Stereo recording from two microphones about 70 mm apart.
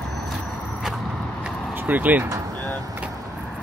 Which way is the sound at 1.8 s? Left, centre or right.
Right.